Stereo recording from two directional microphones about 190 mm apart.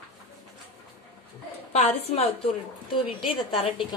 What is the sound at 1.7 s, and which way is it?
A woman's voice, 30° left (ahead or behind).